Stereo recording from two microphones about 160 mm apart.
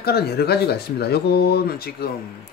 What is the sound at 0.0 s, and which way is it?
Speech, 80° left.